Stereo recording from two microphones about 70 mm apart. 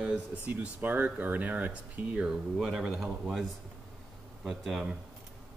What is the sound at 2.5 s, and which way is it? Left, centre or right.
Speech, centre.